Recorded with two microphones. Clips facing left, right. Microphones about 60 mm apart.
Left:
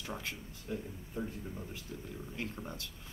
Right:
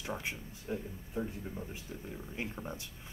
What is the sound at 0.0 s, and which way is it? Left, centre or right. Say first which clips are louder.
A man's voice: right 2 dB; centre.